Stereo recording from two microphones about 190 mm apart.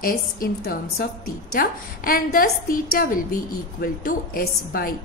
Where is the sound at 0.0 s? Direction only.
50° left (ahead or behind).